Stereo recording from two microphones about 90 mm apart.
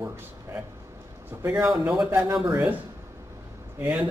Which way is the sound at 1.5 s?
5° right (ahead or behind).